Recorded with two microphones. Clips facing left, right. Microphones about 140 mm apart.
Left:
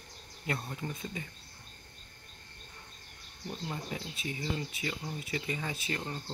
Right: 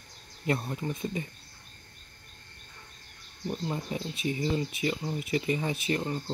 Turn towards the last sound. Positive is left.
turn(degrees=-20)  # may be behind; listen again after turning